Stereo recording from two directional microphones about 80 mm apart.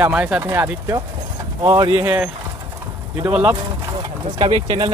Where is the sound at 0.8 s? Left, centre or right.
Right.